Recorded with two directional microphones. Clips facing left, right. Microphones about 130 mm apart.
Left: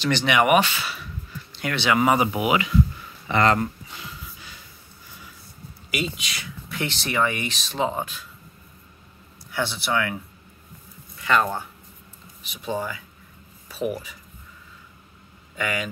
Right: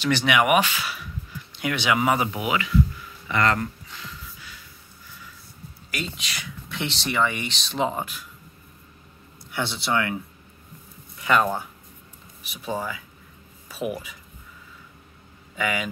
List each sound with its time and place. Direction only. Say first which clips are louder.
0.0 s speech: left 1 dB; 5° right (ahead or behind)
2.1 s speech: left 4 dB; 10° left (ahead or behind)
3.3 s speech: left 3 dB; 30° left (ahead or behind)
3.9 s music: left 1 dB; 20° left (ahead or behind)
5.9 s speech: left 4 dB; 10° left (ahead or behind)
9.5 s speech: even; 20° right (ahead or behind)
11.1 s speech: right 1 dB; 15° right (ahead or behind)
12.6 s speech: left 1 dB; centre (ahead or behind)
15.5 s speech: right 1 dB; 5° right (ahead or behind)